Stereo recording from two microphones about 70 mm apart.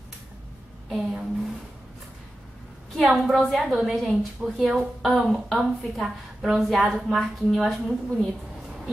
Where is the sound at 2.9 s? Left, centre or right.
Centre.